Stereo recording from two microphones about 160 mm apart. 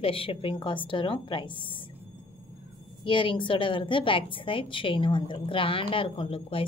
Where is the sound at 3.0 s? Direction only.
30° left (ahead or behind).